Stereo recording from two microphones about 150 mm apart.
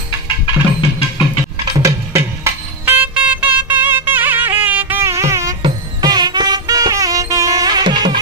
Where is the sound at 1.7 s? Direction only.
20° right (ahead or behind).